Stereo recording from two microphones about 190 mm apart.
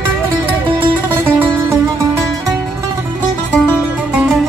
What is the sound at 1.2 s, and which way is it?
Music, 10° right (ahead or behind).